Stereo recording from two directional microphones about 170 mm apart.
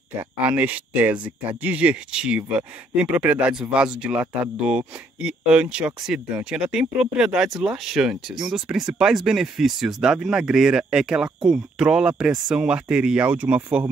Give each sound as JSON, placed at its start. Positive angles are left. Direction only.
{"t": 0.5, "sound": "speech", "side_deg": -10}